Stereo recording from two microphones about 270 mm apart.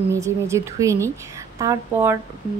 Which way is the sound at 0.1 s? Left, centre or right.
Centre.